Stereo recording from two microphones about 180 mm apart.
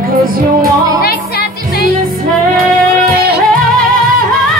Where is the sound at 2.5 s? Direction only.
55° right (ahead or behind).